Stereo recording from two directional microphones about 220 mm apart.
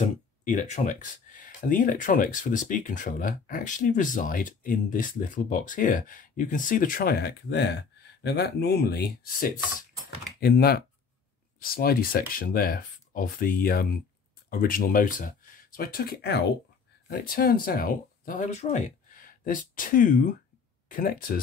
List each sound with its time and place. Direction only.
0.5 s speech: 35° left (ahead or behind)